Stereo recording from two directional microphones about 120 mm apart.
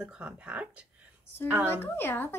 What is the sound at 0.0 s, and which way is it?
Speech, 10° right (ahead or behind).